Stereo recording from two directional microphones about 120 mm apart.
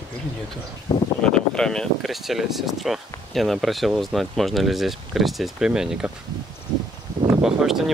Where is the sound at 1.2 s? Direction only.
5° left (ahead or behind).